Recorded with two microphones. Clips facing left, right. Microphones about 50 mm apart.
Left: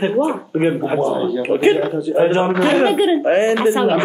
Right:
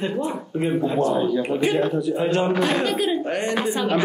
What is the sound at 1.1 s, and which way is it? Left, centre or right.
Speech, centre.